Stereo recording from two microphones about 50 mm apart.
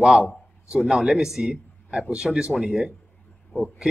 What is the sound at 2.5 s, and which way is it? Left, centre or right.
Speech, centre.